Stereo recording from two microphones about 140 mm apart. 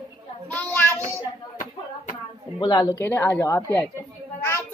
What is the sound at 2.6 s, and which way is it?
A woman's voice, 25° left (ahead or behind).